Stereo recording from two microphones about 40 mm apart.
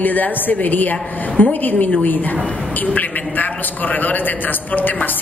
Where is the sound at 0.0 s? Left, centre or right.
Left.